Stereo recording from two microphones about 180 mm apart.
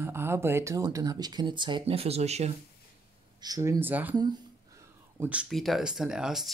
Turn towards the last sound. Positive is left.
turn(degrees=0)  # may be behind; listen again after turning